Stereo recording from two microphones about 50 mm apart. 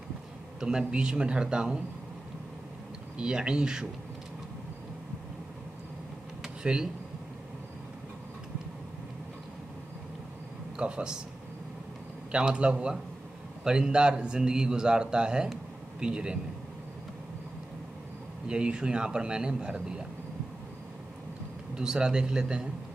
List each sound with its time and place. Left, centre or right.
0.6 s a man's voice: centre
3.2 s a man's voice: centre
6.4 s a sound: centre
10.8 s a man's voice: centre
12.3 s a man's voice: right
18.5 s a man's voice: centre
21.7 s a man's voice: centre